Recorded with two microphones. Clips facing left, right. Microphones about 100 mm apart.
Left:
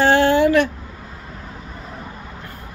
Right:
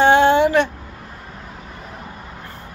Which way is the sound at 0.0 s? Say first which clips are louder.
Right 2 dB; 20° right (ahead or behind).